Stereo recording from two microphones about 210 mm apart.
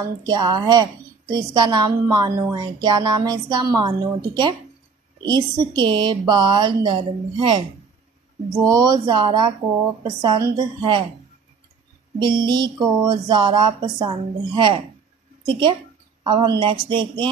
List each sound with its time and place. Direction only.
0.2 s a woman's voice: 20° right (ahead or behind)
8.6 s a woman's voice: 20° right (ahead or behind)
12.2 s a woman's voice: 20° right (ahead or behind)
16.3 s a woman's voice: 20° right (ahead or behind)